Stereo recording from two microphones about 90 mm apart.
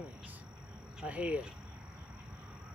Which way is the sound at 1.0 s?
15° right (ahead or behind).